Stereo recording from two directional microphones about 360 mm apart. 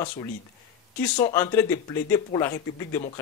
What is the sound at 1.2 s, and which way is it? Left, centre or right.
Speech, centre.